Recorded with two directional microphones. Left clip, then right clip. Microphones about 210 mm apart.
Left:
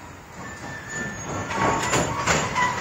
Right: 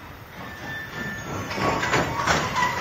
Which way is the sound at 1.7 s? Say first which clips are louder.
Even; 60° left (ahead or behind).